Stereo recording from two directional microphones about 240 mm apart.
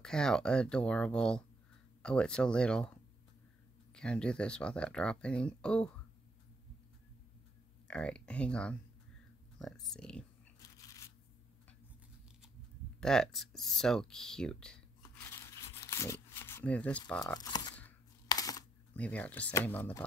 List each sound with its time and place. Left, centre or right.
0.0 s speech: centre
7.9 s speech: centre
10.8 s shuffling cards: centre
13.0 s speech: centre
15.3 s tearing: centre
17.2 s speech: centre
17.7 s a sound: centre